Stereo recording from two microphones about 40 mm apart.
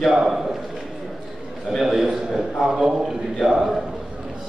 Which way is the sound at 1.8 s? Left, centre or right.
Centre.